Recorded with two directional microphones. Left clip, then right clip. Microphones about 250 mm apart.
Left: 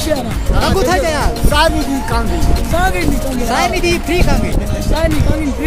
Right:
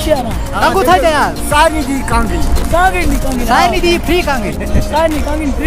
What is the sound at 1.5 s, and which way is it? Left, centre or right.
Speech, centre.